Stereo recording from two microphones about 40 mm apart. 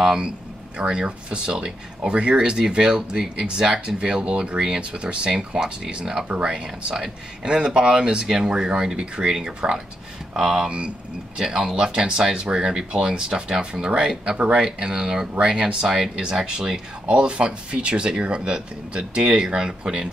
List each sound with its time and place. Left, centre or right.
0.0 s speech: centre
6.5 s speech: centre